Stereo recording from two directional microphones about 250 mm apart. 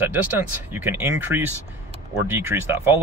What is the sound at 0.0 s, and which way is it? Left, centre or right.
A man's voice, centre.